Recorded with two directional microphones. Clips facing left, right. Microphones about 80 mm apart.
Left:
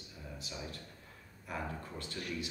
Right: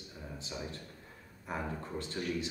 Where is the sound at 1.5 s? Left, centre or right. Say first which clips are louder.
Right 3 dB; right.